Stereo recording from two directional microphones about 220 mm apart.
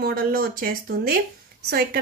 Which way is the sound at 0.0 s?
45° right (ahead or behind).